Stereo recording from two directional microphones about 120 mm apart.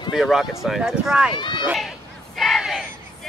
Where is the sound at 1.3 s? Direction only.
40° left (ahead or behind).